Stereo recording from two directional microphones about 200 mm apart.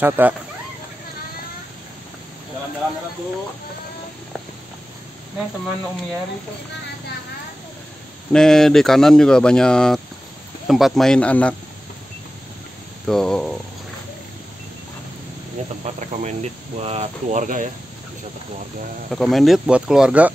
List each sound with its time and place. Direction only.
0.0 s speech: 10° right (ahead or behind)
8.3 s speech: 5° left (ahead or behind)
13.0 s speech: centre (ahead or behind)
15.8 s speech: 35° right (ahead or behind)
19.1 s speech: centre (ahead or behind)